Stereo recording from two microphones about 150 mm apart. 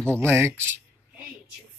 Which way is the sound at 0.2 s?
15° right (ahead or behind).